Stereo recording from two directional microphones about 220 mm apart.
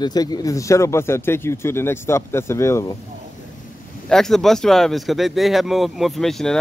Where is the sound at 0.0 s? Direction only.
20° left (ahead or behind).